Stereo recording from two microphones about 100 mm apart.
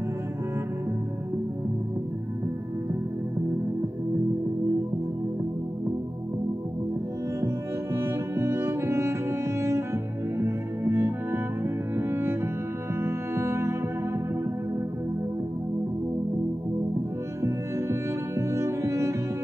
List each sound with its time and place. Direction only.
7.9 s music: 25° right (ahead or behind)
9.6 s cello: 30° right (ahead or behind)
10.4 s music: 25° right (ahead or behind)
12.0 s cello: 25° right (ahead or behind)
13.0 s music: 25° right (ahead or behind)
17.4 s music: 30° right (ahead or behind)